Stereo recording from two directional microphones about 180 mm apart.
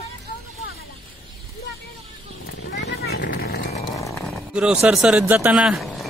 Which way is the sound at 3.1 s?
60° left (ahead or behind).